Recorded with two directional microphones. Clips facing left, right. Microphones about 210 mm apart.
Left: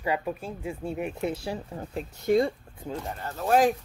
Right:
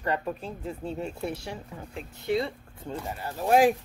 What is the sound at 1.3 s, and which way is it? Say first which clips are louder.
Speech: left 5 dB; 35° left (ahead or behind).